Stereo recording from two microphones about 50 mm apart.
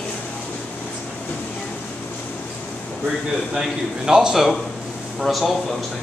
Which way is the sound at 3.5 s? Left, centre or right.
Centre.